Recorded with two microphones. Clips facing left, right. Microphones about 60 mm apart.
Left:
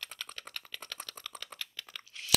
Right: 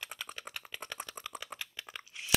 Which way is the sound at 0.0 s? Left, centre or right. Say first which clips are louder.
Right 2 dB; centre.